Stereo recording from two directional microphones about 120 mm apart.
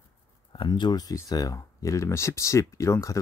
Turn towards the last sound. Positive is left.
turn(degrees=25)  # may be behind; listen again after turning